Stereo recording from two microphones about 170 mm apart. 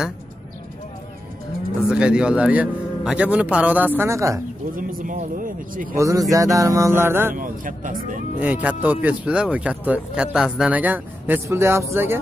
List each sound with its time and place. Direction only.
1.9 s speech: 5° right (ahead or behind)
4.7 s a man's voice: 55° right (ahead or behind)
5.9 s music: 20° right (ahead or behind)
7.3 s a man's voice: 55° right (ahead or behind)
8.4 s speech: 10° right (ahead or behind)